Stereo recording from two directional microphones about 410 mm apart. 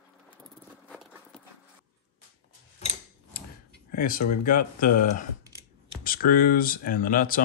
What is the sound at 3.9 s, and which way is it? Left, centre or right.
Speech, left.